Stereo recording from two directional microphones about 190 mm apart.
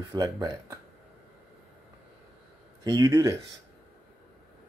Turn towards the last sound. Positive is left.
turn(degrees=-20)  # may be behind; listen again after turning